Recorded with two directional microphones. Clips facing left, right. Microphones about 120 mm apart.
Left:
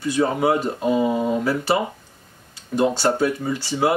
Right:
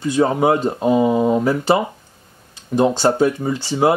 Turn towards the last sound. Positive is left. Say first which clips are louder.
# right 4 dB
turn(degrees=-25)  # may be behind; listen again after turning